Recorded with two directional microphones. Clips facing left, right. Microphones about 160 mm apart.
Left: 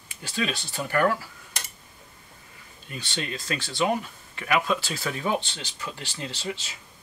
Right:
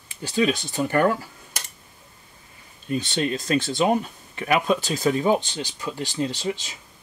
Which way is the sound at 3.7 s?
25° right (ahead or behind).